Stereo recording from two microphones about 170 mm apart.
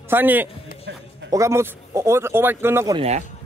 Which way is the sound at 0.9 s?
90° right.